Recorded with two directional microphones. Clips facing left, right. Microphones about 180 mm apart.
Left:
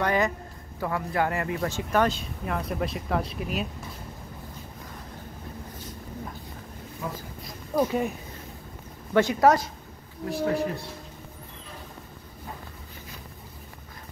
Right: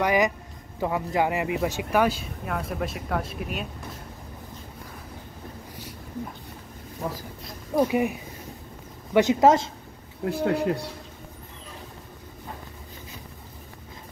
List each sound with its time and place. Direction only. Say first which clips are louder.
0.0 s speech: right 2 dB; 15° right (ahead or behind)
7.7 s speech: right 2 dB; 15° right (ahead or behind)
9.1 s speech: right 2 dB; 20° right (ahead or behind)
10.2 s speech: right 2 dB; 65° right (ahead or behind)